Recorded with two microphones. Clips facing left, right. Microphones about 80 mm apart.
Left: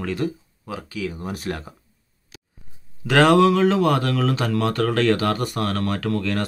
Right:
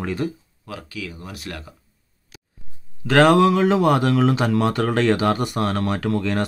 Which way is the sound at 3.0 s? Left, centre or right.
Centre.